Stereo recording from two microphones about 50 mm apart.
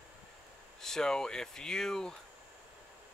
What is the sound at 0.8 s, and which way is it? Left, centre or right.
Speech, centre.